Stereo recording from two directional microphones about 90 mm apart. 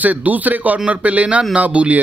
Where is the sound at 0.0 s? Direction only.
20° right (ahead or behind).